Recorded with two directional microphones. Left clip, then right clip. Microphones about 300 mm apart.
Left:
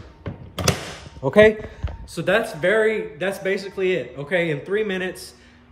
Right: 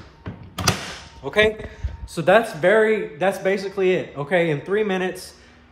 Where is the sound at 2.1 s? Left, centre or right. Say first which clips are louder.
Right 4 dB; centre.